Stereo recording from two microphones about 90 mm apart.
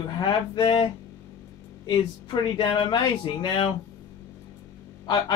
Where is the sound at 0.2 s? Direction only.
55° left (ahead or behind).